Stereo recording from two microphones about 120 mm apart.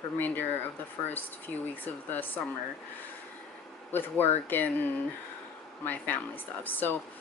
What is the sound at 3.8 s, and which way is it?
Speech, 15° left (ahead or behind).